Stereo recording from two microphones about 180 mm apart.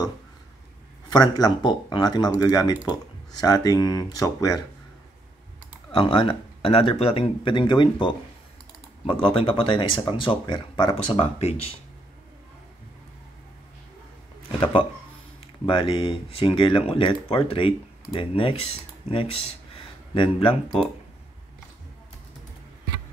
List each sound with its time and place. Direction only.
1.1 s speech: 20° left (ahead or behind)
5.9 s speech: 25° left (ahead or behind)
14.6 s speech: 30° left (ahead or behind)